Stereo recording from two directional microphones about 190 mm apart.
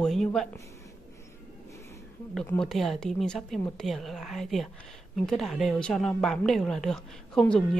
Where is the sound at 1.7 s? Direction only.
15° left (ahead or behind).